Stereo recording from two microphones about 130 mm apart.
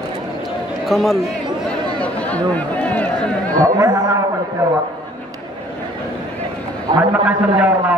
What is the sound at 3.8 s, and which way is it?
Speech, 25° right (ahead or behind).